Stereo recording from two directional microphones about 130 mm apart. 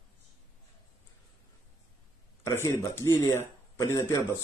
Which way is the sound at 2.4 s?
20° left (ahead or behind).